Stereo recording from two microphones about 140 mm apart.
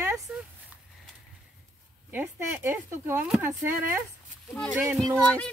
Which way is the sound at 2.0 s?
15° right (ahead or behind).